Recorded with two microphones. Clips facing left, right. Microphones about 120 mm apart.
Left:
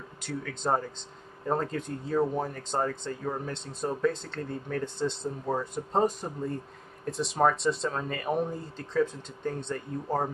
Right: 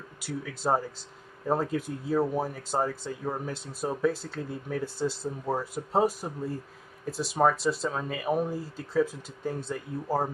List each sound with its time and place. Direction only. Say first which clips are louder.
0.2 s speech: right 1 dB; 10° right (ahead or behind)